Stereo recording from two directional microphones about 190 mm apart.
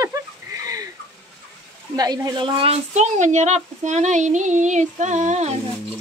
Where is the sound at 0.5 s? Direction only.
20° right (ahead or behind).